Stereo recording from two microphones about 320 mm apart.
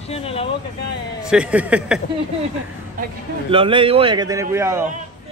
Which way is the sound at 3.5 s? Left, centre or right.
Centre.